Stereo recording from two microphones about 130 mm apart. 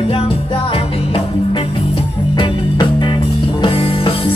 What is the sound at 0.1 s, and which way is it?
Music, 45° left (ahead or behind).